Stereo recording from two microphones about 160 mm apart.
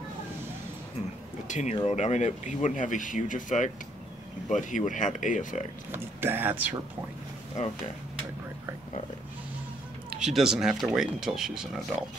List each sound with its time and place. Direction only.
1.5 s speech: 45° left (ahead or behind)
5.9 s speech: 15° right (ahead or behind)
10.0 s speech: 5° right (ahead or behind)